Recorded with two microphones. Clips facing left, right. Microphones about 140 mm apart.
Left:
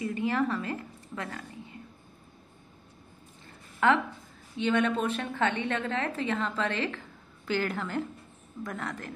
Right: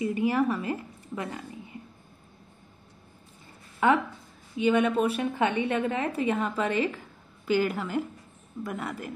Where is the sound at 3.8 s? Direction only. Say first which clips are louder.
Right 2 dB; 10° right (ahead or behind).